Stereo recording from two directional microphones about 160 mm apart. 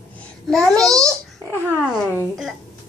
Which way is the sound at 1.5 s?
15° right (ahead or behind).